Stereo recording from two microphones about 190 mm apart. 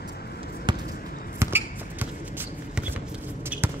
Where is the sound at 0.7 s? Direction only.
25° right (ahead or behind).